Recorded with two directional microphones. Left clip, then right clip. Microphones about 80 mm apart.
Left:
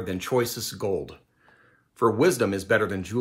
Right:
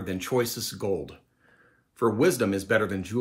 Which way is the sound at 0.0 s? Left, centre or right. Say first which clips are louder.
Left 2 dB; left.